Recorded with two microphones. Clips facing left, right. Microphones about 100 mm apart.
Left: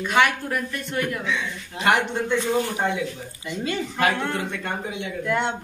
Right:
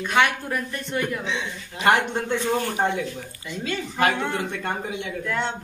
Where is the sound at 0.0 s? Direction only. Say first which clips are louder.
Left 1 dB; centre (ahead or behind).